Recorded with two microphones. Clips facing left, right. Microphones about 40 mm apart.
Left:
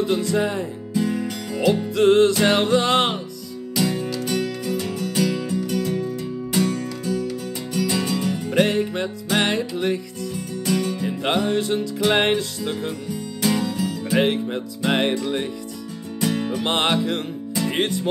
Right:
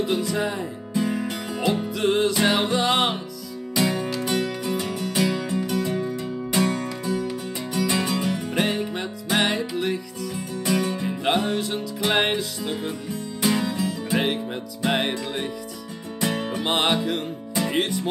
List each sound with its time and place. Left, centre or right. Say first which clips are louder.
0.1 s music: left 3 dB; centre
0.9 s music: left 1 dB; centre
2.0 s music: left 7 dB; centre
3.7 s music: even; right
8.5 s music: left 5 dB; centre
10.3 s music: left 1 dB; right
11.5 s music: left 4 dB; centre
13.4 s music: left 1 dB; centre
14.1 s music: left 5 dB; centre
16.2 s music: left 2 dB; right
16.6 s music: left 1 dB; centre
17.6 s music: left 2 dB; centre